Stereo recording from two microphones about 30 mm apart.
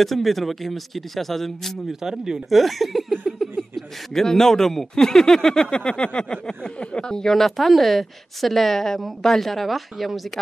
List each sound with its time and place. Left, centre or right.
0.0 s speech: centre
1.9 s speech: centre
2.5 s speech: centre
3.1 s chuckle: centre
4.2 s a man's voice: centre
5.0 s a sound: centre
5.8 s a sound: left
6.8 s speech: left
7.1 s a man's voice: centre
7.4 s speech: centre